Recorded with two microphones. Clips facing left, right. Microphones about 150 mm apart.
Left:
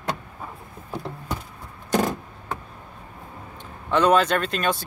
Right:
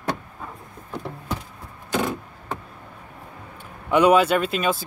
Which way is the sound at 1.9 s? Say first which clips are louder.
Left 2 dB; 40° left (ahead or behind).